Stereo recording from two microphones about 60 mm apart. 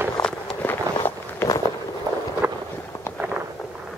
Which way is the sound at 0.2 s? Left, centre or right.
Left.